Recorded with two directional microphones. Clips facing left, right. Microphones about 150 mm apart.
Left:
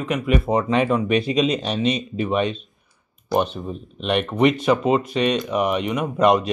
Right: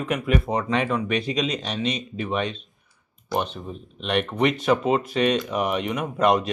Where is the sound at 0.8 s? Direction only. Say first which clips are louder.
Left 5 dB; 25° left (ahead or behind).